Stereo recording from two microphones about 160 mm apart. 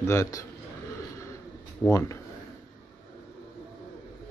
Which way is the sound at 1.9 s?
15° left (ahead or behind).